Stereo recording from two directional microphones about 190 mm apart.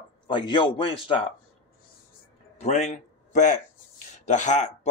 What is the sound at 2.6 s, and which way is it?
A man's voice, 35° left (ahead or behind).